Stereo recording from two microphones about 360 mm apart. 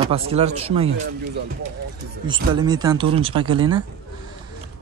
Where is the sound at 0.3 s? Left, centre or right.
Centre.